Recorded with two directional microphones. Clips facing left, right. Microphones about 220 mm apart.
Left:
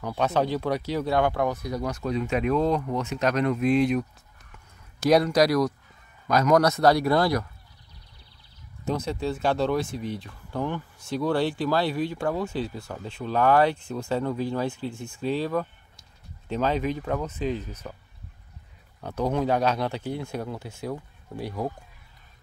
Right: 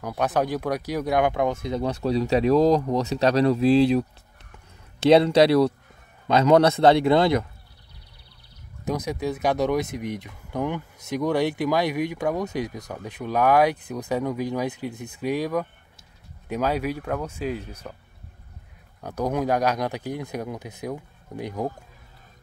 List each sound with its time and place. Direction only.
0.0 s speech: 10° right (ahead or behind); by 4.0 s 30° right (ahead or behind)
5.1 s a man's voice: 25° right (ahead or behind)
8.8 s speech: 15° right (ahead or behind)
19.0 s speech: 10° right (ahead or behind)